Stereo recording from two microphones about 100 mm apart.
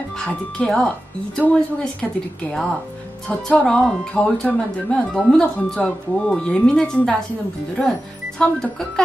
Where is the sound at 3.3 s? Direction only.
10° left (ahead or behind).